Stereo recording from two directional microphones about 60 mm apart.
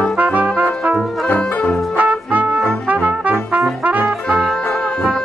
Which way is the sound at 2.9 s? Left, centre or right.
Right.